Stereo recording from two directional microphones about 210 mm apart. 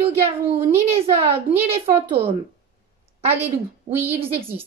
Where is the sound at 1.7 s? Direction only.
30° right (ahead or behind).